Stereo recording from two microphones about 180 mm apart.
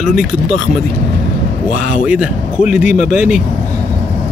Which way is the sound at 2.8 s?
45° left (ahead or behind).